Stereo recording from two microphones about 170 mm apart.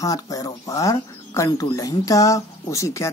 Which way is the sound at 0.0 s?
20° left (ahead or behind).